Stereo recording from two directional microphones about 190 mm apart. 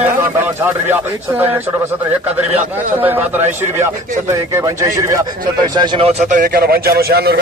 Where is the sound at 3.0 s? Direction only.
10° right (ahead or behind).